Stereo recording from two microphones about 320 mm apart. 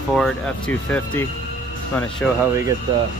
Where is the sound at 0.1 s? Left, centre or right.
Centre.